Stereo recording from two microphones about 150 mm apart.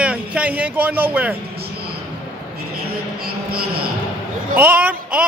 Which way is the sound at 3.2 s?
90° right.